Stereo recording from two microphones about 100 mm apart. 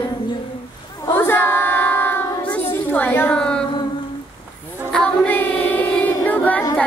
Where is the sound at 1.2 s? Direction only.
20° left (ahead or behind).